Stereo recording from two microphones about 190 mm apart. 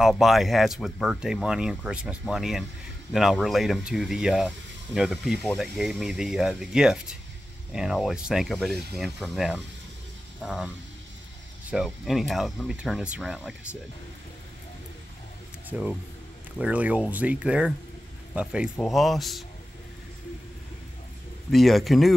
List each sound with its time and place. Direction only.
0.0 s speech: centre (ahead or behind)
11.7 s speech: centre (ahead or behind)
15.7 s speech: 5° right (ahead or behind)
21.5 s speech: centre (ahead or behind)